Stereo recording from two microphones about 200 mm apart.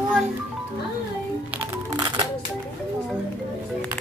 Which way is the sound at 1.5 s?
10° right (ahead or behind).